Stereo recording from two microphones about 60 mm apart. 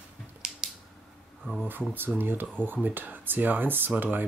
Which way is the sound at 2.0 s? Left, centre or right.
Right.